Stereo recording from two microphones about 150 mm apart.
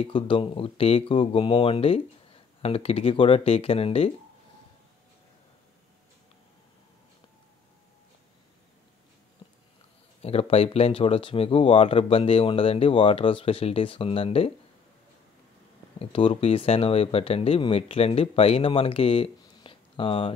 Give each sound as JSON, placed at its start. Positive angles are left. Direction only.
{"t": 0.0, "sound": "speech", "side_deg": 35}
{"t": 9.4, "sound": "a sound", "side_deg": 35}
{"t": 10.2, "sound": "speech", "side_deg": 40}
{"t": 16.0, "sound": "speech", "side_deg": 40}